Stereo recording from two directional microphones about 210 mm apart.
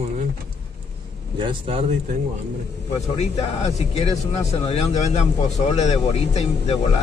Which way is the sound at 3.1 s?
30° left (ahead or behind).